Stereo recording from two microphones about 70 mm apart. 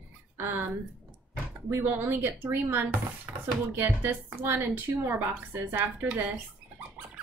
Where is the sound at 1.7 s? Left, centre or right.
Right.